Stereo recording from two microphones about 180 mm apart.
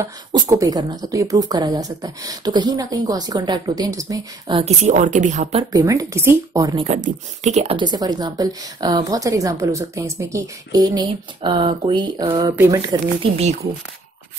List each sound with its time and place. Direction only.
0.3 s speech: 20° right (ahead or behind)
4.6 s speech: 40° right (ahead or behind)
5.7 s speech: 20° right (ahead or behind)
6.8 s speech: 40° right (ahead or behind); by 12.9 s 15° right (ahead or behind)
13.2 s speech: 35° right (ahead or behind)